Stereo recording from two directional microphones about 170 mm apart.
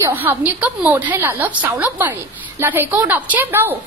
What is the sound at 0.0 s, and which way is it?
A woman's voice, 15° right (ahead or behind).